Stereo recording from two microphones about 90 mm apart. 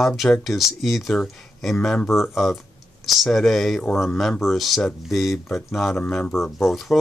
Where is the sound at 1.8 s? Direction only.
15° left (ahead or behind).